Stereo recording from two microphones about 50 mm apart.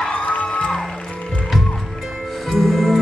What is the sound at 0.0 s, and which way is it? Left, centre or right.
Music, left.